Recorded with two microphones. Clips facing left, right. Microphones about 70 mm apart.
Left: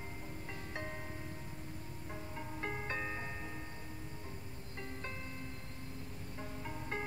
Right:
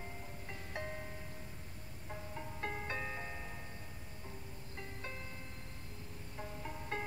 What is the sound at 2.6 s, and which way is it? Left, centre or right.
Music, centre.